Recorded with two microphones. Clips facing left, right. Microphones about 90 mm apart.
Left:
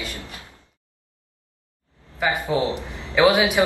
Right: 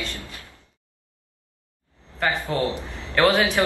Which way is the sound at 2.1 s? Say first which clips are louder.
Left 1 dB; 10° left (ahead or behind).